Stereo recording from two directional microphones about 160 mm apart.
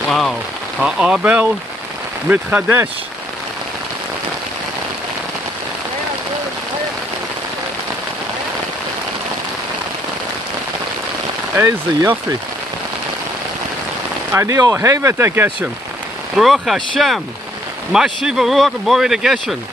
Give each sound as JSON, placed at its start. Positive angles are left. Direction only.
{"t": 0.1, "sound": "speech", "side_deg": 0}
{"t": 11.5, "sound": "speech", "side_deg": -15}
{"t": 14.3, "sound": "speech", "side_deg": -20}
{"t": 16.3, "sound": "speech", "side_deg": 0}